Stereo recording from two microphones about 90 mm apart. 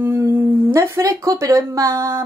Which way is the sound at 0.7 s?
35° right (ahead or behind).